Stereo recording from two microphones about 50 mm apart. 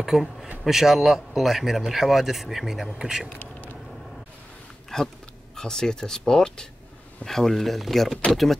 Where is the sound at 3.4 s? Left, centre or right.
Left.